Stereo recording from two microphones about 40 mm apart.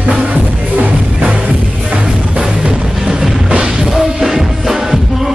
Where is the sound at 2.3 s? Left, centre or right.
Right.